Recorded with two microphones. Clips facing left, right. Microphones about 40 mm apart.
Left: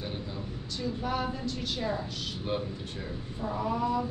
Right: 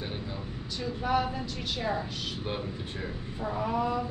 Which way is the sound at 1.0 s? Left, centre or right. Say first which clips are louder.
Right 5 dB; centre.